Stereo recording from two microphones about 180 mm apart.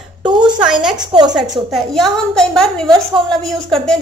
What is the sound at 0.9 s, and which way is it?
Speech, 25° right (ahead or behind).